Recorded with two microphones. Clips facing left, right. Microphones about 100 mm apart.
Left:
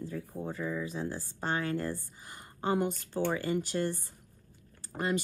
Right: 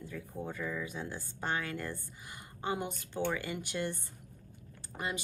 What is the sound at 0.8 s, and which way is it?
Speech, 40° left (ahead or behind).